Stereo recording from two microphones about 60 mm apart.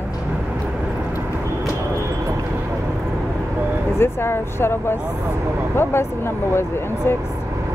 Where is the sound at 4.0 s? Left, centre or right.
Left.